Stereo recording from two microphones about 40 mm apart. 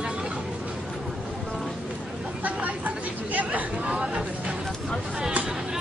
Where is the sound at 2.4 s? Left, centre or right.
Right.